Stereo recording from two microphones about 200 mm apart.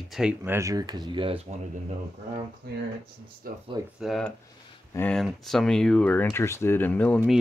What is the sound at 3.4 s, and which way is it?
Speech, 45° right (ahead or behind).